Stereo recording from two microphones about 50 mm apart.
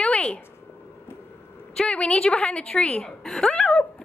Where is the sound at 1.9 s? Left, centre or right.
Left.